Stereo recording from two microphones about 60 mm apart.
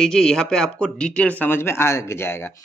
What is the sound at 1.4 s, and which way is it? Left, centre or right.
Speech, left.